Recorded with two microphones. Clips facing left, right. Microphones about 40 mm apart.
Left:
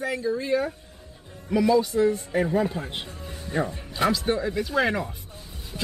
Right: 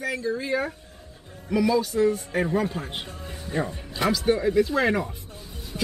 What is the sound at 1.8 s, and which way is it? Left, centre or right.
Speech, centre.